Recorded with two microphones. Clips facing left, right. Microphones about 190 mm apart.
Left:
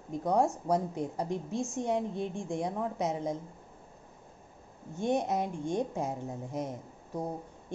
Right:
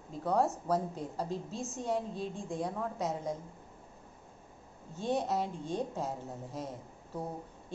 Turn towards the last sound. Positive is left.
turn(degrees=20)  # may be behind; listen again after turning